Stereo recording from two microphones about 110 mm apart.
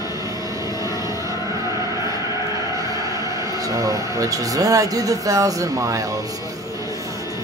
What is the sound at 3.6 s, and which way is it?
Speech, 30° right (ahead or behind).